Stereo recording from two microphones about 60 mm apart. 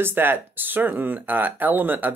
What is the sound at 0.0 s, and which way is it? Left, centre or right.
Speech, right.